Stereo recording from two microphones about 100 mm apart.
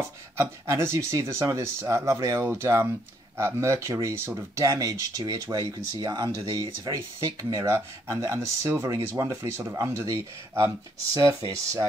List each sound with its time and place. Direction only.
0.4 s speech: 25° right (ahead or behind)